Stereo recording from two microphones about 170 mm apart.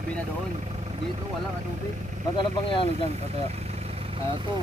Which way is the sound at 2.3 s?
30° left (ahead or behind).